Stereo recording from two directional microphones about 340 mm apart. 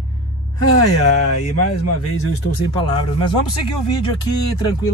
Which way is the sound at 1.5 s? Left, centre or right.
Left.